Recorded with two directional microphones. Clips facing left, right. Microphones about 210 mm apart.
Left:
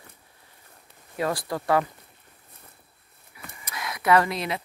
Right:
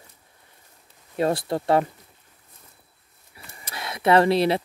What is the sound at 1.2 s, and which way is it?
Speech, 25° right (ahead or behind).